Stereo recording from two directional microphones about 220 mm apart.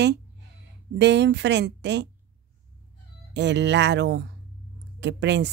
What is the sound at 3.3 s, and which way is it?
A woman's voice, 55° right (ahead or behind).